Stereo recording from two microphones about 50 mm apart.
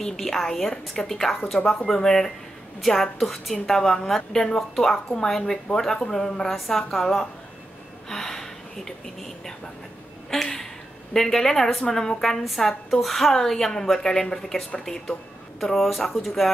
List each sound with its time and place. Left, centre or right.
0.0 s a woman's voice: centre
10.3 s a woman's voice: centre
15.6 s a woman's voice: centre